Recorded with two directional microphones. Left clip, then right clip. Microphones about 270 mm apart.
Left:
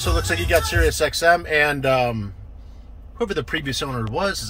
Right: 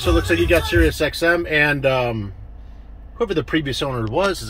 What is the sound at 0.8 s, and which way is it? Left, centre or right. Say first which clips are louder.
Speech: left 1 dB; centre.